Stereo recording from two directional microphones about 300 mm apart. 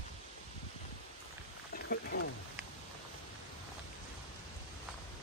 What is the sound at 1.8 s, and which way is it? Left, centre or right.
Wild animals, left.